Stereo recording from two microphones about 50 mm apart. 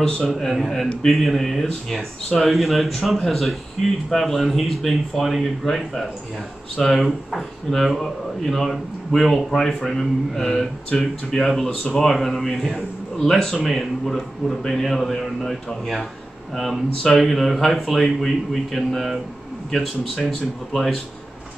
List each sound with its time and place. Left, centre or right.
0.2 s speech: centre